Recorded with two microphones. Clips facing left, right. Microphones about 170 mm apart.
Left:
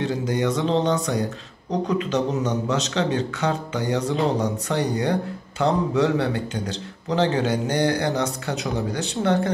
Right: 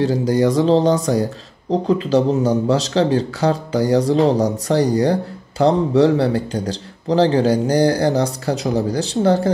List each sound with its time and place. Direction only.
0.0 s speech: 35° right (ahead or behind)